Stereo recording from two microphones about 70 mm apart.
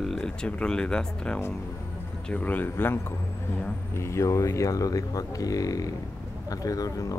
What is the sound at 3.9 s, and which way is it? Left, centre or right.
Speech, left.